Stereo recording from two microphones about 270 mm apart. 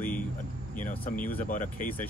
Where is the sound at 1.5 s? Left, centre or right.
Left.